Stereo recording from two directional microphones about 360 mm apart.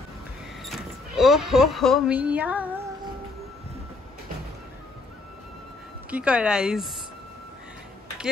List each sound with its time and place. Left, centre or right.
0.6 s speech: centre
6.0 s speech: centre